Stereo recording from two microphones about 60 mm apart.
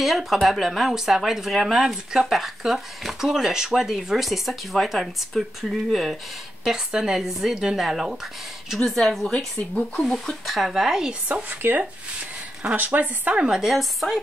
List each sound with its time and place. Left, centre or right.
0.0 s speech: centre
11.6 s speech: right
13.4 s speech: centre